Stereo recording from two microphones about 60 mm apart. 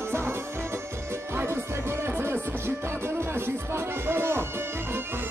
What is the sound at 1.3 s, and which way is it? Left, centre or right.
Music, right.